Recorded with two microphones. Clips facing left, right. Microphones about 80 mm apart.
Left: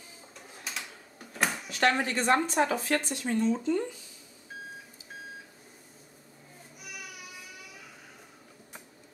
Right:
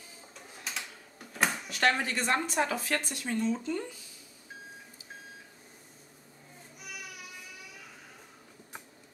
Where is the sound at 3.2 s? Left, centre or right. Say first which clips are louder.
Left 3 dB; left.